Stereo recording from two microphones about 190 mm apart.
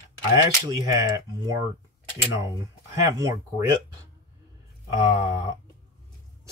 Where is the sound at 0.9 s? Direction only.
20° right (ahead or behind).